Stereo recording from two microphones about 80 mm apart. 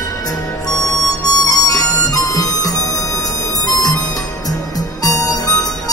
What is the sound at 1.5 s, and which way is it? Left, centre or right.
Harmonica, left.